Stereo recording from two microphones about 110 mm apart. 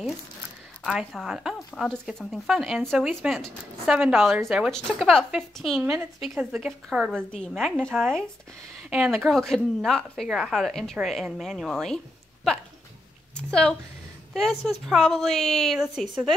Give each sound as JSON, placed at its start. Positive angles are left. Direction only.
{"t": 0.8, "sound": "a woman's voice", "side_deg": -5}
{"t": 5.8, "sound": "a woman's voice", "side_deg": -20}
{"t": 6.2, "sound": "a woman's voice", "side_deg": -5}
{"t": 8.9, "sound": "speech", "side_deg": -10}
{"t": 9.2, "sound": "a woman's voice", "side_deg": 5}
{"t": 13.5, "sound": "a woman's voice", "side_deg": 10}